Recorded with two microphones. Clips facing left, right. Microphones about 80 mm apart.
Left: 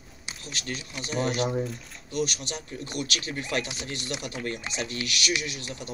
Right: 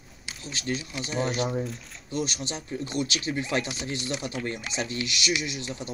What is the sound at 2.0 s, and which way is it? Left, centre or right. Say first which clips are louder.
Speech: left 1 dB; right.